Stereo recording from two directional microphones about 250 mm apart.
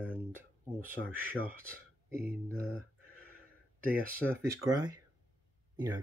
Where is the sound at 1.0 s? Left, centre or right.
Centre.